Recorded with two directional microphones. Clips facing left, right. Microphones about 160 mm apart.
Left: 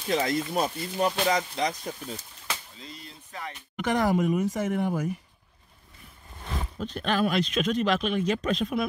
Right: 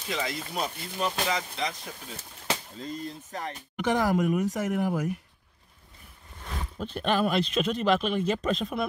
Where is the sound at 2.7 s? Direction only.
45° right (ahead or behind).